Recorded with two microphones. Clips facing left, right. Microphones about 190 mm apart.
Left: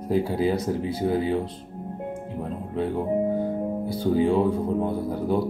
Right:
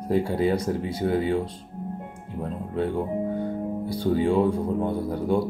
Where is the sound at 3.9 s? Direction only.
Centre (ahead or behind).